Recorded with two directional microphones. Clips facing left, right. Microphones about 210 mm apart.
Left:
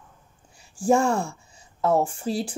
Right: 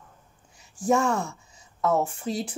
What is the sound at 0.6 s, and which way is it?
A woman's voice, 30° left (ahead or behind).